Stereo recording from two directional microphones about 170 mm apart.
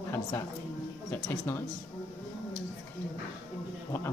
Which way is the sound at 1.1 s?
20° left (ahead or behind).